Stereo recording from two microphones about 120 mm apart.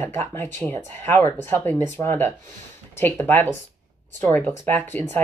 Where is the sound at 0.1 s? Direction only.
20° left (ahead or behind).